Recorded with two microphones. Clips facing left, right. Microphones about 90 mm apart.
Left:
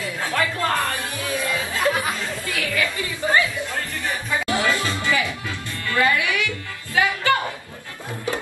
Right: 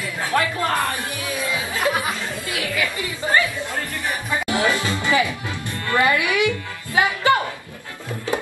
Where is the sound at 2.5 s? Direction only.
20° right (ahead or behind).